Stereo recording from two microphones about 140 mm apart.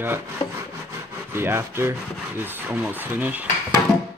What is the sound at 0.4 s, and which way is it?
Rub, 40° left (ahead or behind).